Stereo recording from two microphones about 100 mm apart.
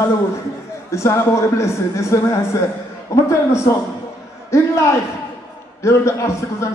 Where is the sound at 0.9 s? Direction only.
30° left (ahead or behind).